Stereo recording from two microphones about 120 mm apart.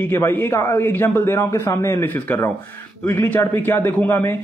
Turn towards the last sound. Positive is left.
turn(degrees=15)  # may be behind; listen again after turning